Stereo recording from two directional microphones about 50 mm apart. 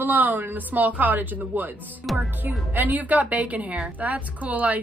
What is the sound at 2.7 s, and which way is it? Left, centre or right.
Speech, right.